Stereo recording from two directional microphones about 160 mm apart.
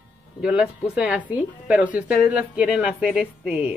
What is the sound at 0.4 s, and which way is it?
A woman's voice, 5° right (ahead or behind).